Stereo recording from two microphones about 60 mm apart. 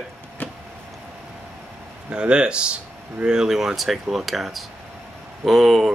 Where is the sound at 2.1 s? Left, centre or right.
Centre.